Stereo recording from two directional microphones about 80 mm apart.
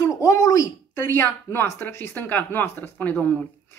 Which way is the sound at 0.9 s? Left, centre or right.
Left.